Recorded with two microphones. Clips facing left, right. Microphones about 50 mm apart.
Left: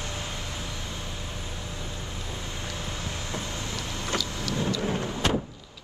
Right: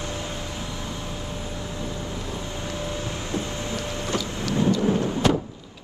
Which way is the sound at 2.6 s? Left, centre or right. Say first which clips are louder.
Right 6 dB; right.